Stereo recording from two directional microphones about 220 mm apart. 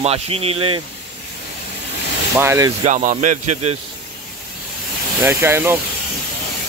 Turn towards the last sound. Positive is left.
turn(degrees=-10)  # may be behind; listen again after turning